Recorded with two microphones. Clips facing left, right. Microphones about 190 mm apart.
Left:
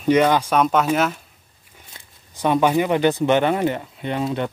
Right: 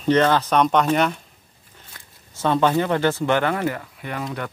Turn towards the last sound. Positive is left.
turn(degrees=25)  # may be behind; listen again after turning